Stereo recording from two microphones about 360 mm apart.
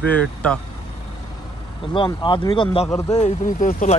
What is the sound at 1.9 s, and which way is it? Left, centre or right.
Speech, centre.